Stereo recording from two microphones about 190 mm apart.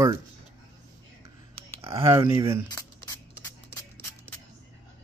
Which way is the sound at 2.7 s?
15° left (ahead or behind).